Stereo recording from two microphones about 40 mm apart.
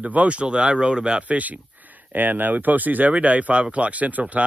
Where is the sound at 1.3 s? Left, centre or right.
Right.